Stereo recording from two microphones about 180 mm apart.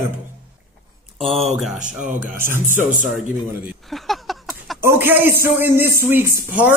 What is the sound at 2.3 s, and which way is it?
Speech, 15° right (ahead or behind).